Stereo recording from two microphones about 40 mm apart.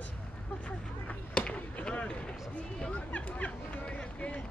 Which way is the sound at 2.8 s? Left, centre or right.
Left.